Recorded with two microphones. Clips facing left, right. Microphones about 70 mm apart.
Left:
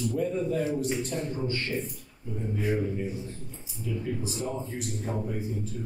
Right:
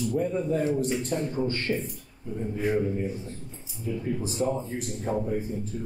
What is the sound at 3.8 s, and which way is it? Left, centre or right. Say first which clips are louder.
A man's voice: right 2 dB; right.